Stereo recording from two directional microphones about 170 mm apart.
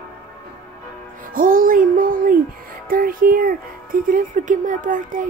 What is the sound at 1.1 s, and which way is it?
Music, 55° right (ahead or behind).